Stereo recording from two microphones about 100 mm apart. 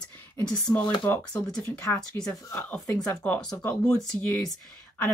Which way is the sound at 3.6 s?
15° left (ahead or behind).